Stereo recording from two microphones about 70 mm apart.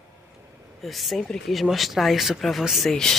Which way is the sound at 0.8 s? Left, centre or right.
Centre.